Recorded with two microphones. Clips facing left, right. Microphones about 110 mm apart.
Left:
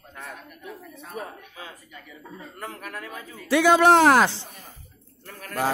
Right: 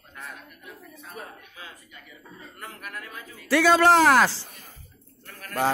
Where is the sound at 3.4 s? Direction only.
20° left (ahead or behind).